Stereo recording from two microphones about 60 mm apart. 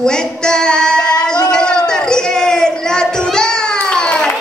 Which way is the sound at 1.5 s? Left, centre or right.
Centre.